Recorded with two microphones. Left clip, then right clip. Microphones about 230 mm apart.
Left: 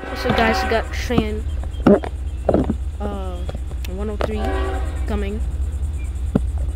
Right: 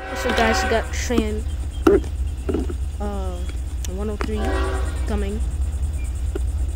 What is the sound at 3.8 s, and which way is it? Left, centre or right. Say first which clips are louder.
Speech: left 3 dB; centre.